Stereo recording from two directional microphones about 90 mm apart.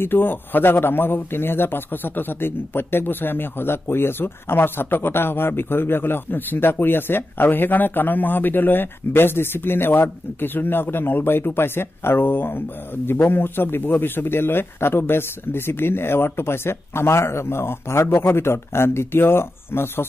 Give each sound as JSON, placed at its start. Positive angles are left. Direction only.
{"t": 0.0, "sound": "a man's voice", "side_deg": 25}